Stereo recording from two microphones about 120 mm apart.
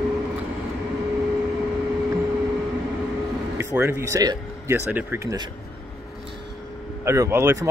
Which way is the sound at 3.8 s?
25° right (ahead or behind).